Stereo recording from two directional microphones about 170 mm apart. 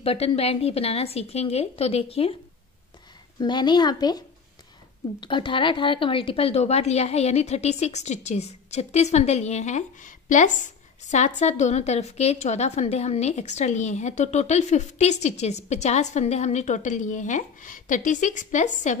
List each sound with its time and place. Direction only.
0.0 s speech: 35° left (ahead or behind)
3.3 s a woman's voice: 25° left (ahead or behind)
5.2 s speech: 30° left (ahead or behind); by 18.9 s 45° left (ahead or behind)